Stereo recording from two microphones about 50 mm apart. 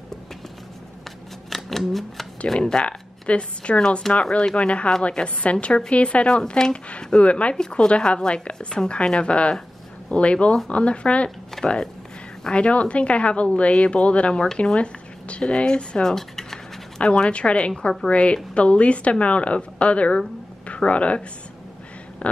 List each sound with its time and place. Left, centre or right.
1.5 s a sound: centre
2.4 s a woman's voice: centre
17.0 s a woman's voice: centre
22.2 s speech: left